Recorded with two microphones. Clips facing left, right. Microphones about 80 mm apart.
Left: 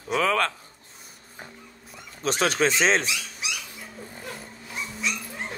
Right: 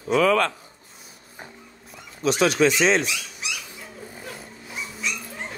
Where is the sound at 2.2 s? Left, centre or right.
Left.